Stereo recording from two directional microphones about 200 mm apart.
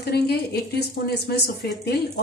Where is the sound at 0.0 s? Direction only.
50° left (ahead or behind).